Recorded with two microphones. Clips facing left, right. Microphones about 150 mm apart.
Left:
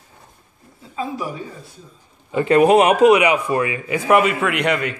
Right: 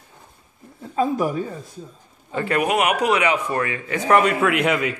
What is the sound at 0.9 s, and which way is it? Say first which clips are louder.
Speech: right 6 dB; 50° right (ahead or behind).